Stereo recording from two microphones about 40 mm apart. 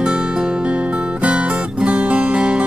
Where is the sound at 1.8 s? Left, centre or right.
Right.